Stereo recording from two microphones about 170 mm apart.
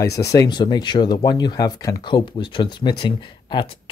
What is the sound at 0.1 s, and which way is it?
Speech, 20° left (ahead or behind).